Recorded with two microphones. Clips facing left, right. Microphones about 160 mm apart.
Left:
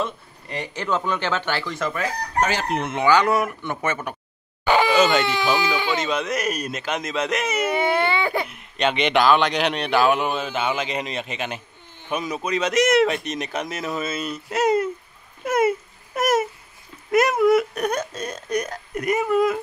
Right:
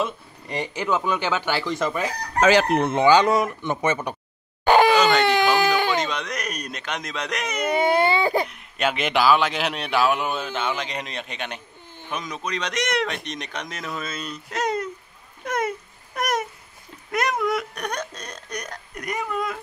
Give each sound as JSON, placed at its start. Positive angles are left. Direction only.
{"t": 0.0, "sound": "speech", "side_deg": -15}
{"t": 2.8, "sound": "speech", "side_deg": -30}
{"t": 4.9, "sound": "baby cry", "side_deg": 5}
{"t": 5.2, "sound": "speech", "side_deg": -50}
{"t": 6.0, "sound": "a man's voice", "side_deg": 5}
{"t": 7.9, "sound": "speech", "side_deg": -40}
{"t": 8.5, "sound": "a man's voice", "side_deg": 0}